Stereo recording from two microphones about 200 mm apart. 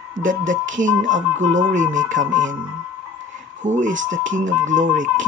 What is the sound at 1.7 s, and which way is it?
Speech, 40° right (ahead or behind).